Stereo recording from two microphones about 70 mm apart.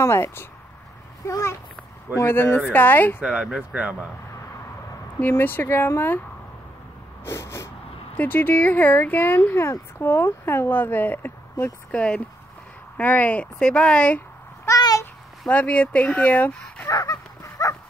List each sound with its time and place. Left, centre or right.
0.0 s a child's voice: left
3.2 s speech: centre
5.2 s speech: left
7.2 s speech: left
8.2 s speech: left
15.5 s speech: left
16.5 s speech: centre
16.9 s dog: left